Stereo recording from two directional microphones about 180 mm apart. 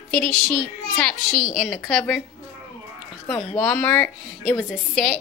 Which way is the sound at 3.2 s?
5° left (ahead or behind).